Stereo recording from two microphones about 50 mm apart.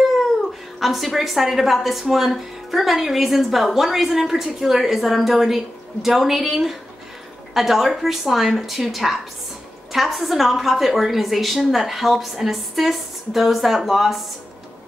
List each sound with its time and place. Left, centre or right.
0.7 s a woman's voice: centre